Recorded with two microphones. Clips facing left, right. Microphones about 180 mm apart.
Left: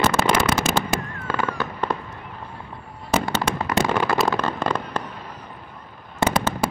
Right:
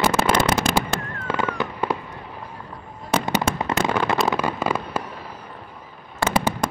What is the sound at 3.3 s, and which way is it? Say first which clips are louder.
Fireworks: right 2 dB; 15° right (ahead or behind).